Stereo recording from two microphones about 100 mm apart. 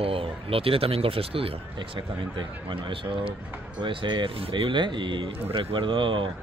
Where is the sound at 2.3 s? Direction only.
60° right (ahead or behind).